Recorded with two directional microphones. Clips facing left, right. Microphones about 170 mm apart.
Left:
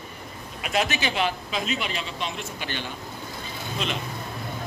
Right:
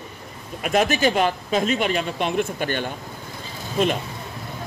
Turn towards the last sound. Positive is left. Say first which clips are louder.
# right 8 dB
turn(degrees=-50)  # may be behind; listen again after turning